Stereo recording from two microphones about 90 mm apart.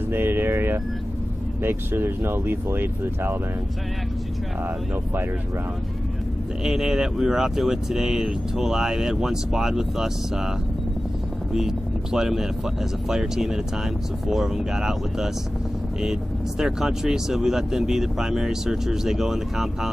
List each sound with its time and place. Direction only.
0.1 s speech: 25° right (ahead or behind)
6.6 s speech: 5° right (ahead or behind)
11.5 s speech: 5° right (ahead or behind)